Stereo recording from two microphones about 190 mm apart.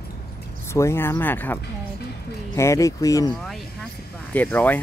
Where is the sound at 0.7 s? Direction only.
15° left (ahead or behind).